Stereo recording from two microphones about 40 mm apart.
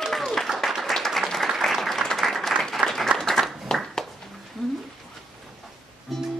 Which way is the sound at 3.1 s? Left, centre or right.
Centre.